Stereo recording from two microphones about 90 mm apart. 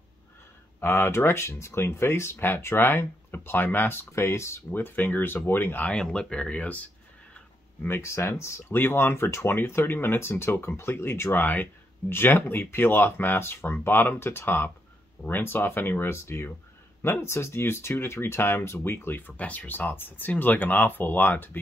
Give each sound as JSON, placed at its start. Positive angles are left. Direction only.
{"t": 0.7, "sound": "speech", "side_deg": 25}
{"t": 5.9, "sound": "speech", "side_deg": 10}
{"t": 8.0, "sound": "speech", "side_deg": 30}